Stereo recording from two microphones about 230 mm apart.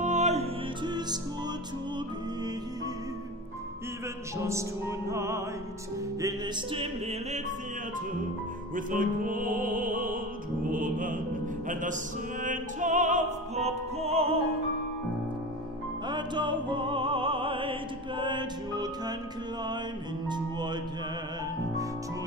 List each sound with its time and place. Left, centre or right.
0.0 s music: right
4.4 s music: centre; by 7.5 s right
8.7 s music: right
10.7 s mantra: right
11.6 s opera: right
16.1 s music: centre
20.2 s music: centre